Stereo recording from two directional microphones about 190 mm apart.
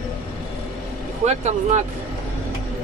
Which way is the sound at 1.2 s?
35° right (ahead or behind).